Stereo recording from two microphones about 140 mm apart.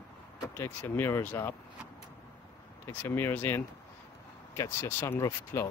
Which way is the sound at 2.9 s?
15° left (ahead or behind).